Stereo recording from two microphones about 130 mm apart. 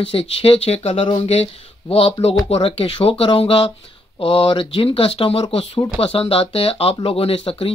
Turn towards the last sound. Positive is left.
turn(degrees=45)  # may be behind; listen again after turning